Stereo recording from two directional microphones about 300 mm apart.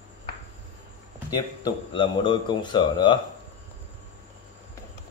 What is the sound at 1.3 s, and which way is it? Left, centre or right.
Speech, centre.